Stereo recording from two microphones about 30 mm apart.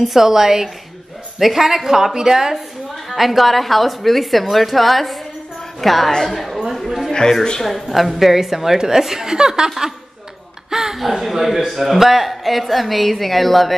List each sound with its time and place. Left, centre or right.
0.0 s a woman's voice: centre
3.2 s a man's voice: centre
7.1 s a sound: centre
7.6 s a woman's voice: centre; by 9.7 s right
10.7 s a man's voice: centre